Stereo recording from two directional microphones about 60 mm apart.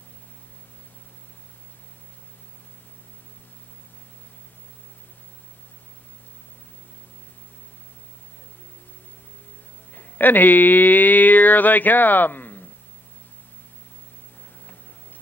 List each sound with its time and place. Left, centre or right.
9.9 s speech: left